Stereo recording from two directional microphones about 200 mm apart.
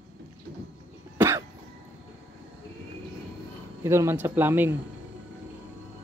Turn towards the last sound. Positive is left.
turn(degrees=-10)  # may be behind; listen again after turning